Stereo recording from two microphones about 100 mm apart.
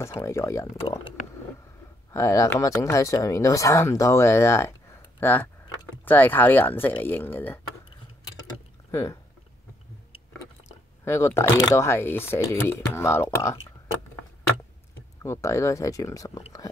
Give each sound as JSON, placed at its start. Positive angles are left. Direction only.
{"t": 0.2, "sound": "speech", "side_deg": 30}
{"t": 2.1, "sound": "speech", "side_deg": 30}
{"t": 8.9, "sound": "speech", "side_deg": 25}
{"t": 11.1, "sound": "speech", "side_deg": 25}
{"t": 15.2, "sound": "speech", "side_deg": 30}